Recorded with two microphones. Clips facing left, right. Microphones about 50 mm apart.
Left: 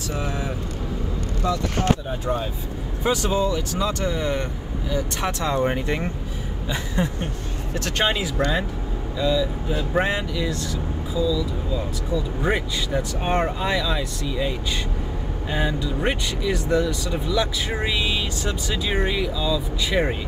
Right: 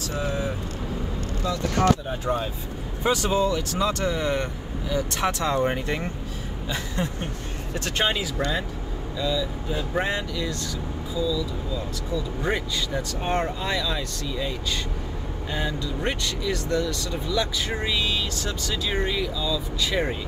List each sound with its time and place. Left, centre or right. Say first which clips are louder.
0.1 s speech: even; left
3.0 s speech: even; centre
7.0 s speech: left 3 dB; centre
11.7 s speech: left 4 dB; centre
15.5 s speech: left 4 dB; centre